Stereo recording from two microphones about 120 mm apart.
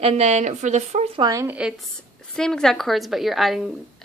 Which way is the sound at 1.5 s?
10° right (ahead or behind).